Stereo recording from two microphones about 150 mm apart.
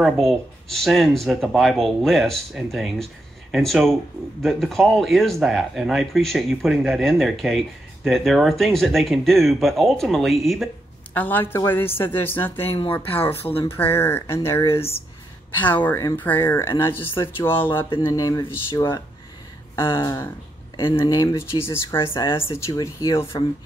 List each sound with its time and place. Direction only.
0.0 s speech: centre (ahead or behind)
11.1 s a woman's voice: 10° left (ahead or behind)
12.6 s speech: 35° left (ahead or behind)
13.7 s a woman's voice: 15° left (ahead or behind)
14.8 s speech: 40° left (ahead or behind)
15.6 s a woman's voice: 10° left (ahead or behind)
17.8 s speech: 30° left (ahead or behind)
19.7 s a sound: 15° left (ahead or behind)
20.0 s speech: 20° left (ahead or behind)
20.7 s speech: 35° left (ahead or behind); by 21.7 s 15° left (ahead or behind)
22.1 s speech: 35° left (ahead or behind)
22.4 s speech: 20° left (ahead or behind)